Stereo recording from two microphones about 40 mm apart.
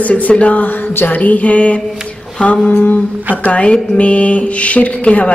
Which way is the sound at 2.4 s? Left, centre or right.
Left.